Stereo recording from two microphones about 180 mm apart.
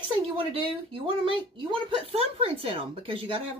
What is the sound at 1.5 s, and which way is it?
Speech, 30° right (ahead or behind).